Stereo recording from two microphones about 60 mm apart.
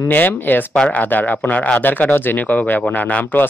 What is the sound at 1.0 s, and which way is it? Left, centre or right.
Speech, left.